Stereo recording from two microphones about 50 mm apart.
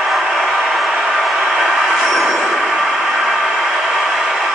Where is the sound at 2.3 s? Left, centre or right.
Centre.